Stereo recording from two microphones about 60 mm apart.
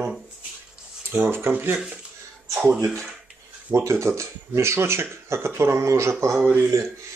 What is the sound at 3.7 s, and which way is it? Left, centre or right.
Speech, right.